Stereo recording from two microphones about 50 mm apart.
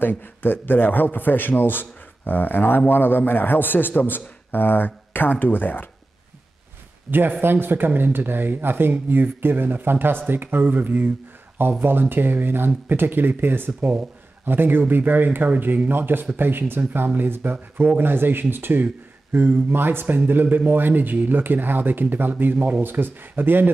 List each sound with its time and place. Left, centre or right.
0.0 s a man's voice: left
7.1 s speech: right